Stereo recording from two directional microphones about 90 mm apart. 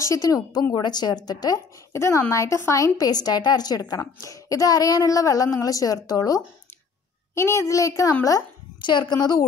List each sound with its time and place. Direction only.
0.0 s a woman's voice: 40° left (ahead or behind)
2.0 s a woman's voice: 30° left (ahead or behind)
7.3 s a woman's voice: 30° left (ahead or behind)
8.8 s a woman's voice: 55° left (ahead or behind)